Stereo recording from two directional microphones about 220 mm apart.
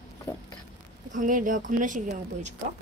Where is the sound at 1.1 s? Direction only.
35° right (ahead or behind).